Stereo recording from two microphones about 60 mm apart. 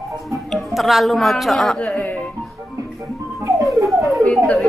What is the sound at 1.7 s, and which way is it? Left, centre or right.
Music, left.